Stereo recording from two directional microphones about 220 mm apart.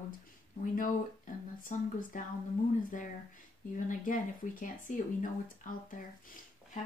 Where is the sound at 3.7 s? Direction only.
35° left (ahead or behind).